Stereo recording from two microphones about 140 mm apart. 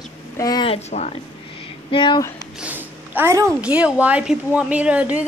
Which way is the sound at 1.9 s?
35° left (ahead or behind).